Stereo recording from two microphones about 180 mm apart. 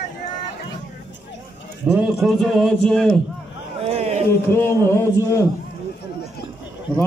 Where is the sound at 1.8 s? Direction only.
Centre (ahead or behind).